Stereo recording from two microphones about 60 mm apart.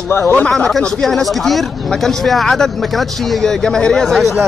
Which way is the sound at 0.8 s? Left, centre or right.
Centre.